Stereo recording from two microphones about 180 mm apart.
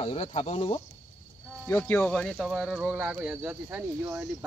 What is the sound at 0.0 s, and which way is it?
Speech, 35° left (ahead or behind).